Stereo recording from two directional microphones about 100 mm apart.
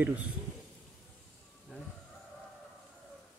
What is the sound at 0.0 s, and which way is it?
Speech, 15° right (ahead or behind).